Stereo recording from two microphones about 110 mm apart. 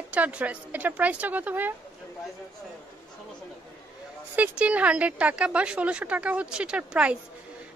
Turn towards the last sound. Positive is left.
turn(degrees=-10)  # may be behind; listen again after turning